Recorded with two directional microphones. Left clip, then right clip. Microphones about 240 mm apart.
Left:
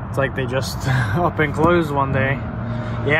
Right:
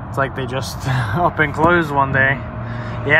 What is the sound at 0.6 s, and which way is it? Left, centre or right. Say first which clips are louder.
Speech: even; right.